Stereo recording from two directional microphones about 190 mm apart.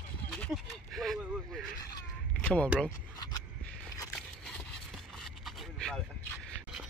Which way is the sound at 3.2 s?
20° left (ahead or behind).